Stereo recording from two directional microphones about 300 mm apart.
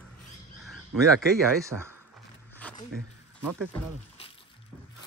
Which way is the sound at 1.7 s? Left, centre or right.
Right.